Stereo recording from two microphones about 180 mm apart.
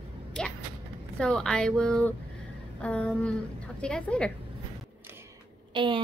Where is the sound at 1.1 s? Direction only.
5° left (ahead or behind).